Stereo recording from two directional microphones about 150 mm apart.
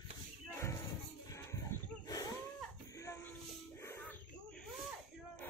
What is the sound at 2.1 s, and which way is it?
Wild animals, 25° left (ahead or behind).